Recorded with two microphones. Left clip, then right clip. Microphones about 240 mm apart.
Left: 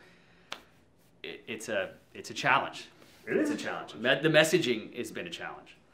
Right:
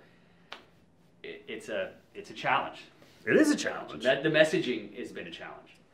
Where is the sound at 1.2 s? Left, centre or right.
Left.